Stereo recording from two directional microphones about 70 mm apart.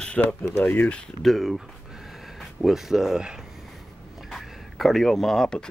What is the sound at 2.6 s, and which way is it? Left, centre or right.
Speech, centre.